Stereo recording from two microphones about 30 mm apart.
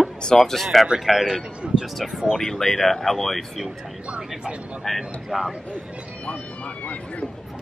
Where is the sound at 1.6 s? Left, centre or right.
Right.